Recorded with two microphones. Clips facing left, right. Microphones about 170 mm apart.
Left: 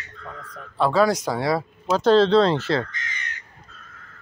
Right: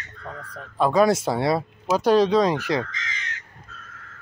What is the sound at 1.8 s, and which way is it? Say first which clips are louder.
Speech: left 2 dB; 10° right (ahead or behind).